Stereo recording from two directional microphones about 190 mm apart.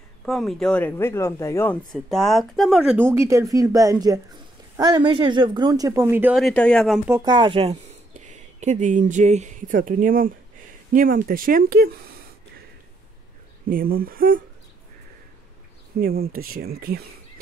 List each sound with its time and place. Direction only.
0.2 s speech: centre (ahead or behind)
2.0 s speech: centre (ahead or behind)
6.4 s speech: 5° left (ahead or behind)
7.2 s speech: 25° right (ahead or behind); by 12.0 s 50° right (ahead or behind)
13.7 s speech: 50° right (ahead or behind)
16.0 s speech: 50° right (ahead or behind)